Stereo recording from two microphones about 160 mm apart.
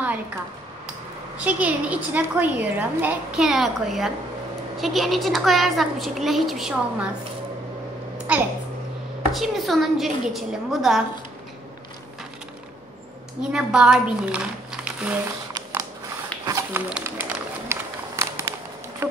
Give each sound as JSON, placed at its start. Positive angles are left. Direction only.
{"t": 1.4, "sound": "a woman's voice", "side_deg": -10}
{"t": 8.2, "sound": "a sound", "side_deg": -10}
{"t": 9.3, "sound": "a woman's voice", "side_deg": 0}
{"t": 13.4, "sound": "speech", "side_deg": -5}
{"t": 16.4, "sound": "speech", "side_deg": -20}
{"t": 17.0, "sound": "run", "side_deg": -15}